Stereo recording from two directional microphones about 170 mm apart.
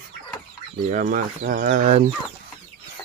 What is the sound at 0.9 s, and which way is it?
Speech, 50° right (ahead or behind).